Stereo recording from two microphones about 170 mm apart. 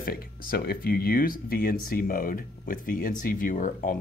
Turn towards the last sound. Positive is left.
turn(degrees=50)  # may be behind; listen again after turning